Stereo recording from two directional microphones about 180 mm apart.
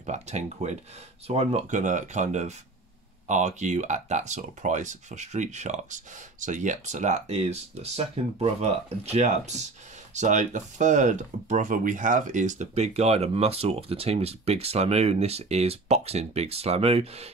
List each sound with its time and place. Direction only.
0.0 s speech: 40° right (ahead or behind)